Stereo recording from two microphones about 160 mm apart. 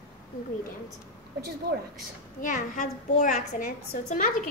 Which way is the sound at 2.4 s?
55° left (ahead or behind).